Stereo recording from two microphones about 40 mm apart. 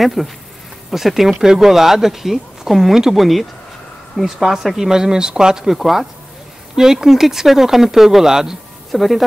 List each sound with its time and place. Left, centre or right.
0.0 s speech: centre
3.2 s speech: centre
5.7 s speech: centre
8.9 s speech: centre